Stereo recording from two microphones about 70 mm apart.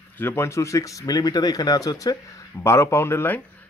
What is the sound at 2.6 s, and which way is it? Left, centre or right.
Speech, left.